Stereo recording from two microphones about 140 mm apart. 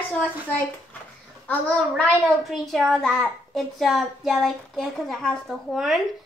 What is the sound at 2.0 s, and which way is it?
A child's voice, centre (ahead or behind).